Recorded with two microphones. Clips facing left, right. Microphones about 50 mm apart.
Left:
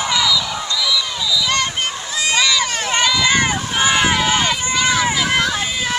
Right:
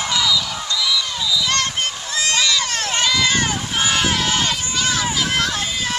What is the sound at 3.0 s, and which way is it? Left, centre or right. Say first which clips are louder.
Run: left 3 dB; centre.